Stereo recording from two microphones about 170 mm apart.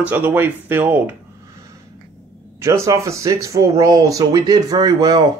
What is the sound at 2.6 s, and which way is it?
Speech, 15° right (ahead or behind).